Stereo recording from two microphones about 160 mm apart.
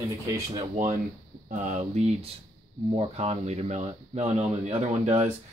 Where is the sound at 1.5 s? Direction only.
50° right (ahead or behind).